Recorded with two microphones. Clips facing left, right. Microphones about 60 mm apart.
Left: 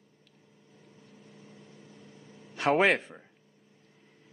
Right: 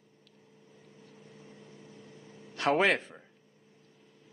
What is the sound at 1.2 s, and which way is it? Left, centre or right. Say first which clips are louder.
Vehicle: even; centre.